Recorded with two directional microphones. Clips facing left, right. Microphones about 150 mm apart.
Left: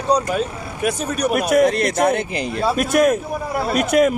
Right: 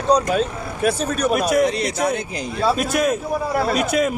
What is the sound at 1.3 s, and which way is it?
A man's voice, 50° left (ahead or behind).